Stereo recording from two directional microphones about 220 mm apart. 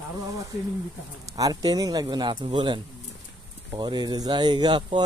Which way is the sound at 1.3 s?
15° right (ahead or behind).